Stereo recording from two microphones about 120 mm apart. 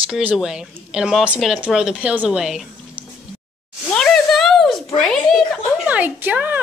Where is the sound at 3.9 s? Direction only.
5° left (ahead or behind).